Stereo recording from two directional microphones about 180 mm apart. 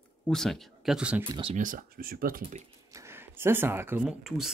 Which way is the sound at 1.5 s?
50° right (ahead or behind).